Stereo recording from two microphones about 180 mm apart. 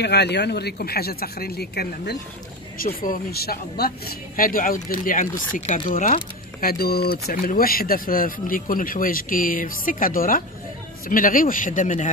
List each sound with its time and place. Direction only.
0.0 s speech: 70° left (ahead or behind); by 12.1 s 45° left (ahead or behind)